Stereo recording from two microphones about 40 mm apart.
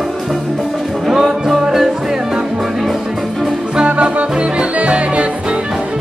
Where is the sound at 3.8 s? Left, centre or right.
Right.